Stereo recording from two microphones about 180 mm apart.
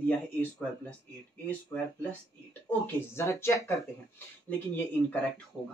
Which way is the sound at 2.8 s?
15° left (ahead or behind).